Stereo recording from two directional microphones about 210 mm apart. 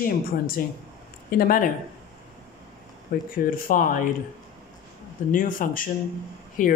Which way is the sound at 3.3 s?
40° left (ahead or behind).